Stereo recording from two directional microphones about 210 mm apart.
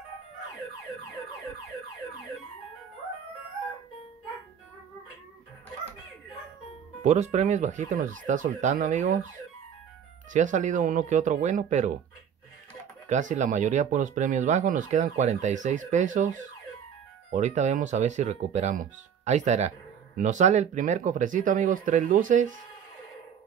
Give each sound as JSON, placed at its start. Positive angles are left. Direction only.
{"t": 7.0, "sound": "speech", "side_deg": -35}
{"t": 10.3, "sound": "speech", "side_deg": -35}
{"t": 13.1, "sound": "speech", "side_deg": -35}